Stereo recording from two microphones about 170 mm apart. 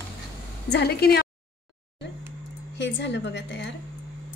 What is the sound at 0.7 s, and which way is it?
Speech, 70° left (ahead or behind).